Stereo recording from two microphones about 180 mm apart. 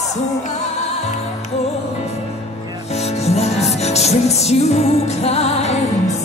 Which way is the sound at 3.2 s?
35° left (ahead or behind).